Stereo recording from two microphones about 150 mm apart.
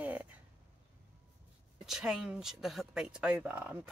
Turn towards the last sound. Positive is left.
turn(degrees=-10)  # may be behind; listen again after turning